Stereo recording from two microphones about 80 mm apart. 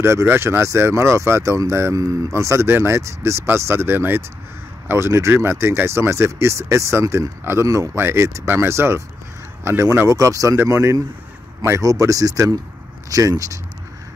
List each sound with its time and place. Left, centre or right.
0.0 s speech: right
8.0 s speech: right